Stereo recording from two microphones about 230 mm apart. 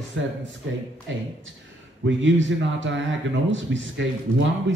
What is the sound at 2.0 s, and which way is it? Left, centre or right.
A man's voice, right.